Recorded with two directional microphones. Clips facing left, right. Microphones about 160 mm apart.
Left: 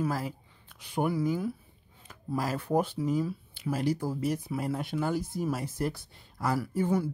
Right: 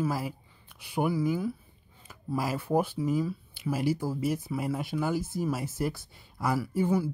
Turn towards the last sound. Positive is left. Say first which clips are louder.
# right 1 dB
turn(degrees=-5)  # may be behind; listen again after turning